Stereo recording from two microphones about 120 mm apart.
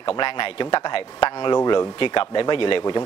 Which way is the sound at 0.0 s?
45° left (ahead or behind).